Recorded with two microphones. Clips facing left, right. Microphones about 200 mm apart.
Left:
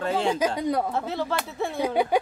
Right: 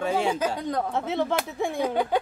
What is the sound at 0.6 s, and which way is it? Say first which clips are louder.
Speech: left 3 dB; 10° left (ahead or behind).